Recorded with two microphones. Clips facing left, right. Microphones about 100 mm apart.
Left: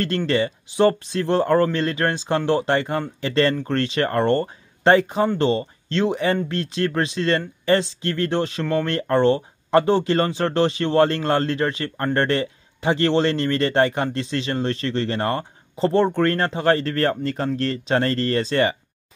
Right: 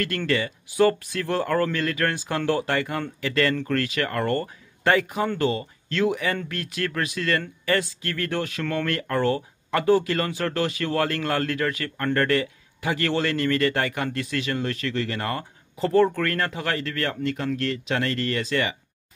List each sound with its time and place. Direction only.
0.3 s speech: 25° left (ahead or behind)